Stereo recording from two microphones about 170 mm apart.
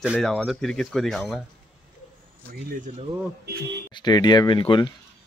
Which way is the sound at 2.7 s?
55° right (ahead or behind).